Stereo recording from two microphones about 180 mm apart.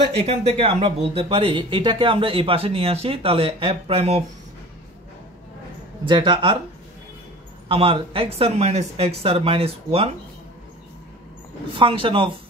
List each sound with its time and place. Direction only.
0.2 s speech: 35° right (ahead or behind)
6.0 s speech: 25° right (ahead or behind)
7.6 s speech: 30° right (ahead or behind)
11.7 s speech: 30° right (ahead or behind)